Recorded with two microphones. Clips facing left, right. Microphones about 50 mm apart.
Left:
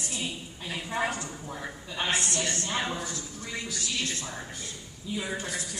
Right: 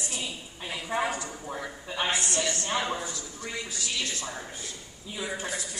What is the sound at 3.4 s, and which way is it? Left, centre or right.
Speech, right.